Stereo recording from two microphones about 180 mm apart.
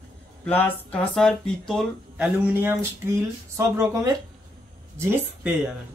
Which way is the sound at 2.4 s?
10° right (ahead or behind).